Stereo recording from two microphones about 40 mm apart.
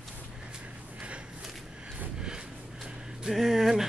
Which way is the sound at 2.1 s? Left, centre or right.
Right.